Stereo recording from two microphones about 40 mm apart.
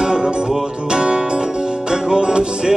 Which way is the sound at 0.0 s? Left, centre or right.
Centre.